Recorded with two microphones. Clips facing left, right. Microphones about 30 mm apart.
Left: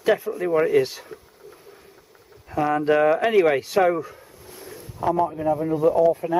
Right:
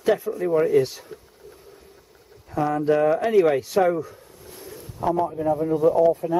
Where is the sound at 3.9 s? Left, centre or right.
Left.